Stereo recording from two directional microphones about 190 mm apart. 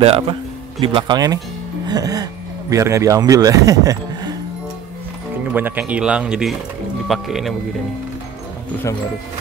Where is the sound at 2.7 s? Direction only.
15° right (ahead or behind).